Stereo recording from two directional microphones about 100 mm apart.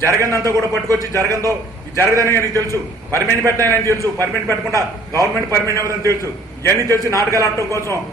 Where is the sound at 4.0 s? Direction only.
25° left (ahead or behind).